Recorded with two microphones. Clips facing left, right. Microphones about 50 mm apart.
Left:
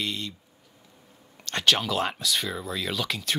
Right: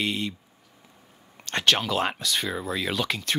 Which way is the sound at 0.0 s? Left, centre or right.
Centre.